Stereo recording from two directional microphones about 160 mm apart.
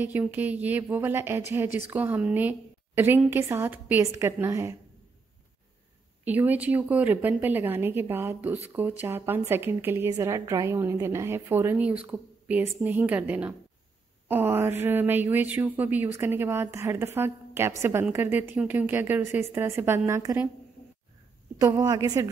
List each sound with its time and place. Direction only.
0.0 s a woman's voice: 10° right (ahead or behind)
6.2 s a woman's voice: 10° right (ahead or behind)
21.5 s a woman's voice: 20° right (ahead or behind)